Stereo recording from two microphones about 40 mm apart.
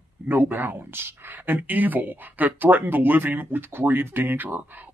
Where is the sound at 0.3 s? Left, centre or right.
Right.